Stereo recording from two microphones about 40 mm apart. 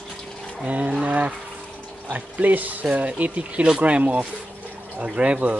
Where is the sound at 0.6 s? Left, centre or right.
Right.